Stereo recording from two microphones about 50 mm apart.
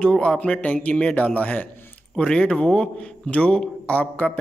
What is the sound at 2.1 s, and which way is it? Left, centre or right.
Speech, centre.